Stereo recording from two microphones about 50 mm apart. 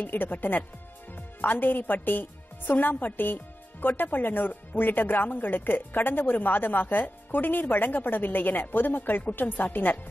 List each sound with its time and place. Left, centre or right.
0.0 s a woman's voice: left